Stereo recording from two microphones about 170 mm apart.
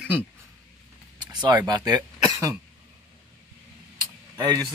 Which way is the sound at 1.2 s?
25° right (ahead or behind).